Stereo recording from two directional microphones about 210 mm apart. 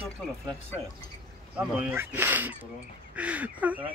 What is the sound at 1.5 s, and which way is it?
Speech, 10° right (ahead or behind).